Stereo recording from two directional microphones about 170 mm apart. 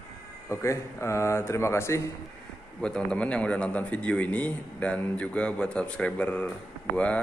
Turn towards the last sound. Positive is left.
turn(degrees=10)  # may be behind; listen again after turning